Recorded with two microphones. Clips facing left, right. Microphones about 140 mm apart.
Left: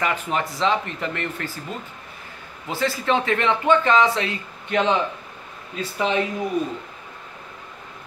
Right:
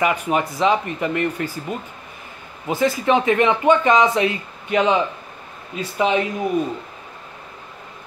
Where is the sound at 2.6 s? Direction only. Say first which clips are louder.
Right 4 dB; 15° right (ahead or behind).